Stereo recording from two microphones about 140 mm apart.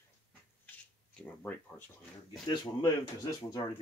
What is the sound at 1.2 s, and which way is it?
Speech, 10° left (ahead or behind).